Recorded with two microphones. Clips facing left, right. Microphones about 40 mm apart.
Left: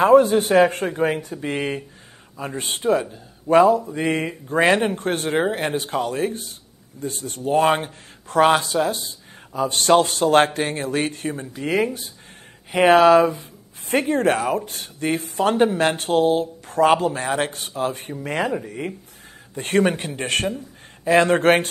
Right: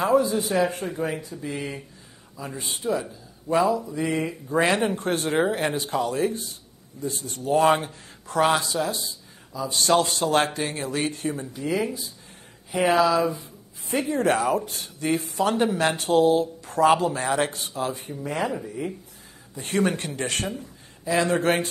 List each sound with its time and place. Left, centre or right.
0.0 s a man's voice: left
4.5 s speech: left
5.3 s speech: left
5.8 s a man's voice: left
7.4 s a man's voice: left
18.2 s a man's voice: left
20.0 s speech: left
21.0 s a man's voice: left